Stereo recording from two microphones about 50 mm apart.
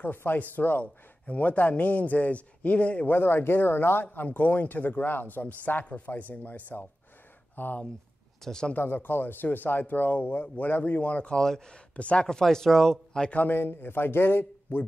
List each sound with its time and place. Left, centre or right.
0.0 s a man's voice: left
3.1 s a man's voice: left
8.5 s speech: centre
8.7 s a man's voice: left
11.3 s speech: centre
11.9 s speech: left
12.3 s speech: centre
13.3 s a man's voice: left
13.6 s speech: left